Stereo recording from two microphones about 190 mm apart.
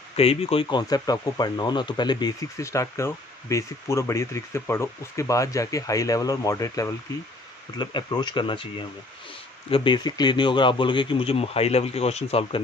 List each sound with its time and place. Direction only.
0.1 s speech: 30° left (ahead or behind)